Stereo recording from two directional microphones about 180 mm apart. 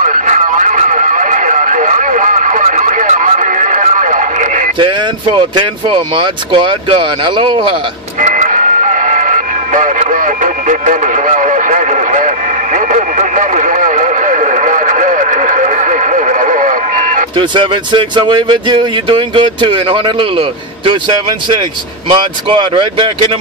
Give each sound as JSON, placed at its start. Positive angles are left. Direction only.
{"t": 0.0, "sound": "radio", "side_deg": -45}
{"t": 5.6, "sound": "speech", "side_deg": -30}
{"t": 8.2, "sound": "music", "side_deg": -45}
{"t": 12.7, "sound": "radio", "side_deg": -40}
{"t": 17.4, "sound": "speech", "side_deg": -25}
{"t": 22.1, "sound": "speech", "side_deg": -30}